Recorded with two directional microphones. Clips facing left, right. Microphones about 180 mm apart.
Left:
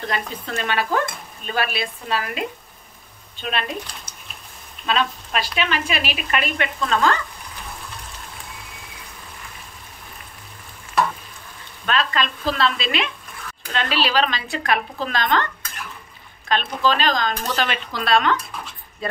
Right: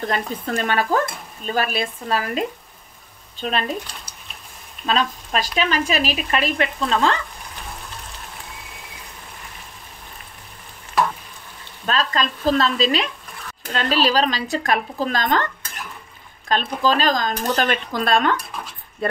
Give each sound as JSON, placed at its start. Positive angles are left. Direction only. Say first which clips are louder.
{"t": 0.1, "sound": "stir", "louder": "right 2 dB", "side_deg": -40}
{"t": 11.8, "sound": "stir", "louder": "even", "side_deg": -40}
{"t": 16.4, "sound": "speech", "louder": "right 1 dB", "side_deg": -40}